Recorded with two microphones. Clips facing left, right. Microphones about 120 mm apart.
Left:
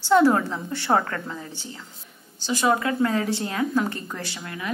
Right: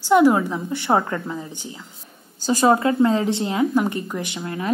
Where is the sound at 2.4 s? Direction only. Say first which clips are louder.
Right 5 dB; 40° right (ahead or behind).